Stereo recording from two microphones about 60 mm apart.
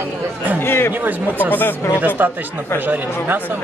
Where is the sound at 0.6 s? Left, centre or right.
Left.